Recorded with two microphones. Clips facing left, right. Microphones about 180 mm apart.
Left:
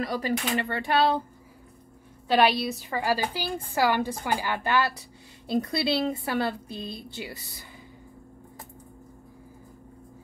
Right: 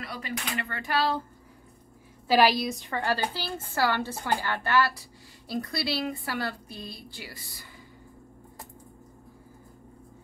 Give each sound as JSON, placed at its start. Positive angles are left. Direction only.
{"t": 0.0, "sound": "a woman's voice", "side_deg": 30}
{"t": 2.2, "sound": "a woman's voice", "side_deg": 0}